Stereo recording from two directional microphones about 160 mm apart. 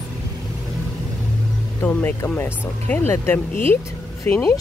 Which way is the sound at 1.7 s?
10° left (ahead or behind).